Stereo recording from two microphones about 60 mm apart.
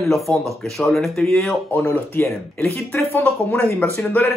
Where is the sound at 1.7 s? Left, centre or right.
Left.